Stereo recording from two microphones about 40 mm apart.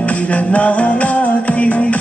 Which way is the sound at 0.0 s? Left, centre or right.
Left.